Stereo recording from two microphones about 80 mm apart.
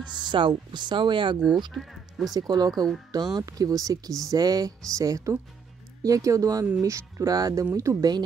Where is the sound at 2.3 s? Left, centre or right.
Right.